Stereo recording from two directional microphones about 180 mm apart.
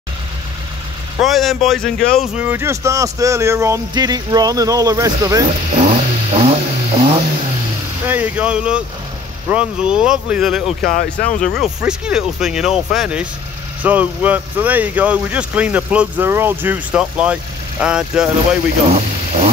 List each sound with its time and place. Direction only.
1.2 s speech: centre (ahead or behind); by 5.5 s 20° right (ahead or behind)
5.8 s vehicle: 35° right (ahead or behind)
8.1 s speech: 10° right (ahead or behind)
11.0 s speech: 45° left (ahead or behind)
11.4 s speech: centre (ahead or behind)
18.9 s speech: 35° right (ahead or behind)